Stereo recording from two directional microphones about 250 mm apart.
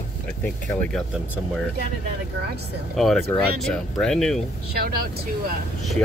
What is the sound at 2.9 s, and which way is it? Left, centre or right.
Speech, centre.